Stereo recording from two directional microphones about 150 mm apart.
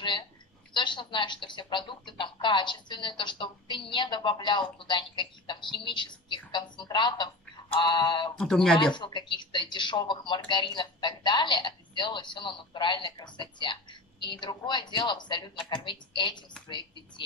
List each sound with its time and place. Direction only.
0.7 s speech: 30° left (ahead or behind)
8.4 s speech: 5° left (ahead or behind)
8.9 s speech: 30° left (ahead or behind)